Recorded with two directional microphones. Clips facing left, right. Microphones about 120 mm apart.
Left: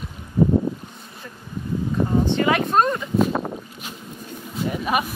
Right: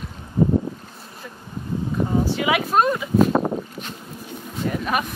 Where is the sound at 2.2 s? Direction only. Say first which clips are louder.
Left 2 dB; 5° right (ahead or behind).